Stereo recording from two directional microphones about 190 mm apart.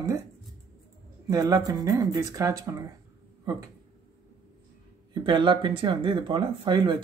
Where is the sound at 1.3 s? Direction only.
20° right (ahead or behind).